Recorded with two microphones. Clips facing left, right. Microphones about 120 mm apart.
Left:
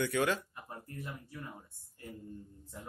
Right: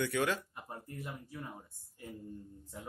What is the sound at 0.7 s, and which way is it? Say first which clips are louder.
Speech: even; 15° right (ahead or behind).